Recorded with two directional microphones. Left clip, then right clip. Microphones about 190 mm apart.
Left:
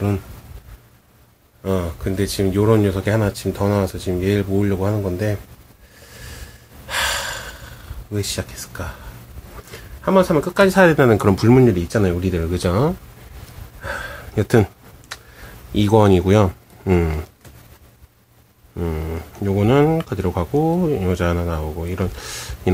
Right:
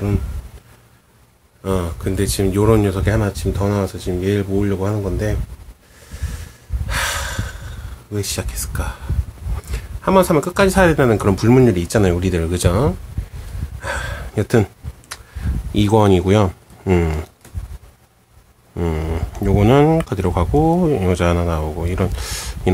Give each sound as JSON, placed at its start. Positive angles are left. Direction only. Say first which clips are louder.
{"t": 1.6, "sound": "speech", "louder": "right 1 dB", "side_deg": -15}
{"t": 6.9, "sound": "gasp", "louder": "left 1 dB", "side_deg": -5}
{"t": 8.1, "sound": "speech", "louder": "right 1 dB", "side_deg": -10}
{"t": 13.8, "sound": "a sound", "louder": "right 3 dB", "side_deg": -10}
{"t": 14.4, "sound": "a sound", "louder": "even", "side_deg": 5}
{"t": 15.7, "sound": "speech", "louder": "even", "side_deg": -5}
{"t": 18.8, "sound": "speech", "louder": "right 3 dB", "side_deg": -15}